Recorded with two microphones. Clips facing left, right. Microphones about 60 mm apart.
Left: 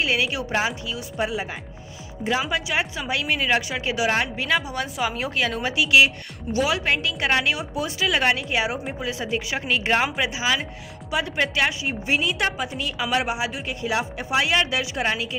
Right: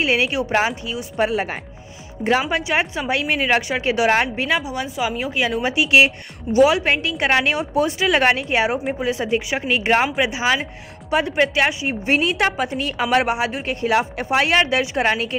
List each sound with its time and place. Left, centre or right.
0.0 s a woman's voice: right
1.2 s a woman's voice: right
2.5 s a woman's voice: right
4.6 s a woman's voice: centre
5.6 s a woman's voice: right
12.1 s a woman's voice: right